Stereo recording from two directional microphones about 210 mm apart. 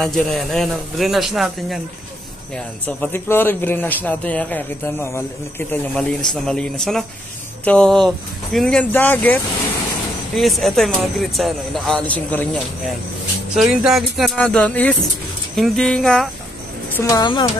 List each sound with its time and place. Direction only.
0.0 s a man's voice: centre (ahead or behind)
16.9 s a woman's voice: 15° left (ahead or behind)